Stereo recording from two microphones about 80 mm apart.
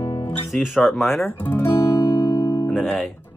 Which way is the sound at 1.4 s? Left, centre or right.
Left.